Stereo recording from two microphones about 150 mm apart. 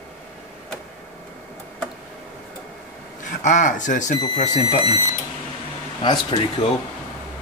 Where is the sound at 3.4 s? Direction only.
55° left (ahead or behind).